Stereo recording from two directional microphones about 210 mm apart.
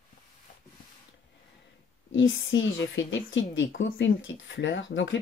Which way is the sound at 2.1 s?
60° left (ahead or behind).